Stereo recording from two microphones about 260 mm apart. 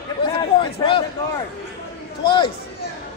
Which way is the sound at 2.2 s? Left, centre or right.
Centre.